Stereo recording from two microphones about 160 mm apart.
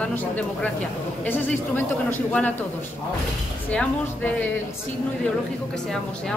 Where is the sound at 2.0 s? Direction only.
10° left (ahead or behind).